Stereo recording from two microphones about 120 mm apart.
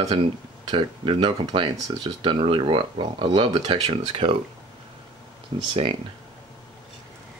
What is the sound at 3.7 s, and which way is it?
Speech, 60° right (ahead or behind).